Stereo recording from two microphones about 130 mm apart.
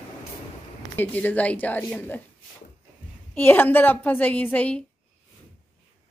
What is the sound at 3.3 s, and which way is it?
A woman's voice, 15° left (ahead or behind).